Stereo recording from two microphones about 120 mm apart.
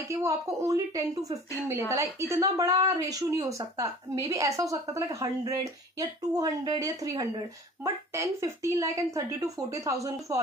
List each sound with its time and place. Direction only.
0.1 s a woman's voice: 25° right (ahead or behind)